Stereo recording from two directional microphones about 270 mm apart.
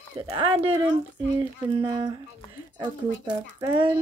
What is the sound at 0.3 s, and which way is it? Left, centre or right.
Speech, centre.